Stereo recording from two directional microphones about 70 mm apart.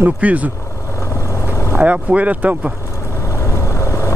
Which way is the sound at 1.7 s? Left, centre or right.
Centre.